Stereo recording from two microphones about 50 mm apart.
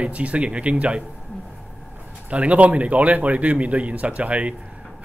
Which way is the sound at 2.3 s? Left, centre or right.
Right.